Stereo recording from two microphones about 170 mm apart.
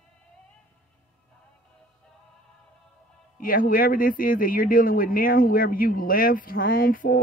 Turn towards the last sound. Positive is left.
turn(degrees=55)  # may be behind; listen again after turning